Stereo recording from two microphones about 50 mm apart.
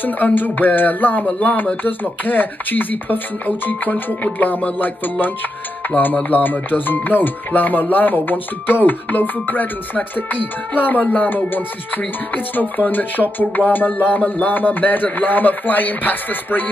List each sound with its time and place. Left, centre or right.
0.0 s speech: left